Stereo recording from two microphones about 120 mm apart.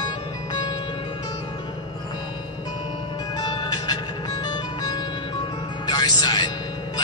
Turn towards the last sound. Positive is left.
turn(degrees=35)  # may be behind; listen again after turning